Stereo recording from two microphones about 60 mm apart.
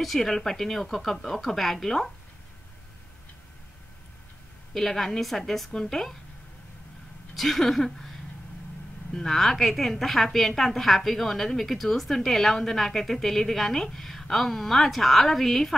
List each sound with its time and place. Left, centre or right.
0.0 s a woman's voice: centre
4.7 s a woman's voice: centre
7.3 s a woman's voice: centre
9.1 s a woman's voice: centre